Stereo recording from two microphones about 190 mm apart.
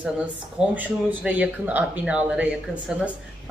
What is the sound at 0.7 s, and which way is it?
Speech, 10° right (ahead or behind).